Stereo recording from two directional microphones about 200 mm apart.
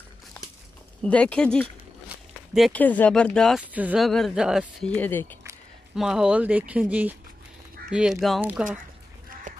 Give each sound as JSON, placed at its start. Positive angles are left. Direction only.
{"t": 1.0, "sound": "speech", "side_deg": 5}
{"t": 5.9, "sound": "speech", "side_deg": -5}